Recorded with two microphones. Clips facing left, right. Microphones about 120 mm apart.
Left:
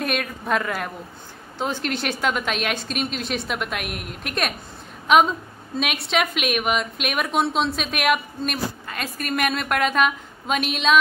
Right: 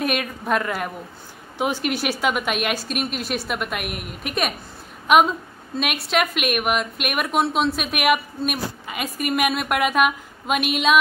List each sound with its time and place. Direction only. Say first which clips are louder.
0.0 s a woman's voice: right 2 dB; 5° right (ahead or behind)